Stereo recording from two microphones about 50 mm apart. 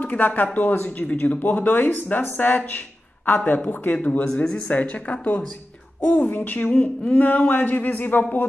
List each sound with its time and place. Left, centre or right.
0.0 s speech: left